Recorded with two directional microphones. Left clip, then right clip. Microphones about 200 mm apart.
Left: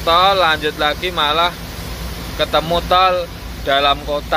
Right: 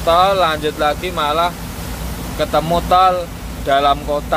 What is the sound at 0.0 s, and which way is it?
Speech, 10° right (ahead or behind).